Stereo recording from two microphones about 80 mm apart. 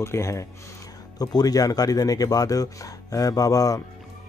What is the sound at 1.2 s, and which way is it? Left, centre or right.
A man's voice, left.